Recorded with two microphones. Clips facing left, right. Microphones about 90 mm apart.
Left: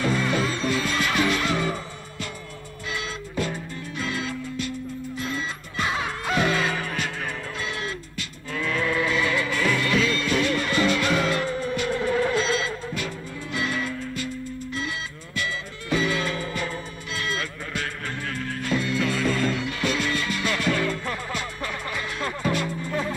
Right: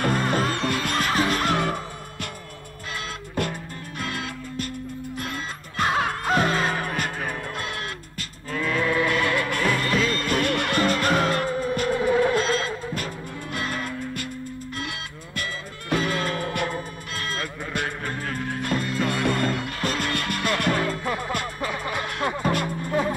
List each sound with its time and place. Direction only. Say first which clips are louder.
0.0 s music: right 1 dB; 50° right (ahead or behind)
2.9 s music: left 1 dB; 50° right (ahead or behind)
7.5 s music: left 1 dB; 55° right (ahead or behind)
8.6 s sheep: right 2 dB; 20° right (ahead or behind)
9.0 s music: right 1 dB; 55° right (ahead or behind)
11.9 s vehicle: right 3 dB; 15° right (ahead or behind)
12.4 s music: right 1 dB; 45° right (ahead or behind)
17.1 s music: left 2 dB; 40° right (ahead or behind)
17.8 s music: right 2 dB; 15° right (ahead or behind)
18.6 s music: left 1 dB; 45° right (ahead or behind)
21.0 s music: right 3 dB; 15° right (ahead or behind)
22.4 s music: even; 50° right (ahead or behind)